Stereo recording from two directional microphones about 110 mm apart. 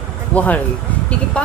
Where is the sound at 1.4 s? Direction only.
10° left (ahead or behind).